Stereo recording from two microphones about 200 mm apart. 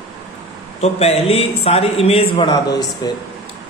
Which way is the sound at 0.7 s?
30° left (ahead or behind).